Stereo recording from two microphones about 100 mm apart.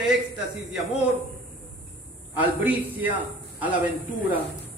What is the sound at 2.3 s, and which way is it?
Speech, 15° right (ahead or behind).